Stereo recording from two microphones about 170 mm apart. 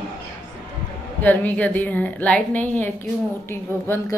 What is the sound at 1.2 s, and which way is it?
A woman's voice, 10° left (ahead or behind).